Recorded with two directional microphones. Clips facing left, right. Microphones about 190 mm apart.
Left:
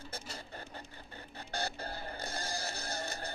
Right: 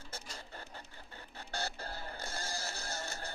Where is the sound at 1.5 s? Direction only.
15° left (ahead or behind).